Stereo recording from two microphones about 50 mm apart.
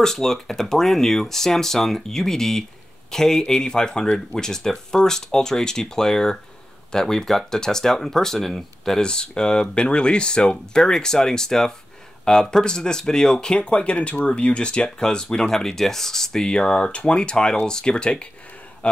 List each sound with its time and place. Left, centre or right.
0.0 s speech: centre
9.0 s speech: centre